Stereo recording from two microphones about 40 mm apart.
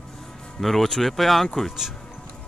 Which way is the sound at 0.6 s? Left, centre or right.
Centre.